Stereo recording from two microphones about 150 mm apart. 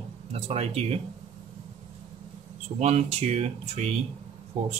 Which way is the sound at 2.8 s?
45° right (ahead or behind).